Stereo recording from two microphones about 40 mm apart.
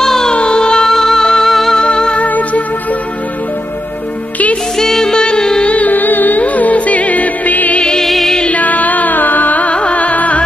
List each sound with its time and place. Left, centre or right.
0.0 s music: centre
0.8 s music: centre
1.8 s music: left
2.1 s music: left
4.7 s music: centre
5.7 s music: left
8.0 s music: centre
8.5 s music: left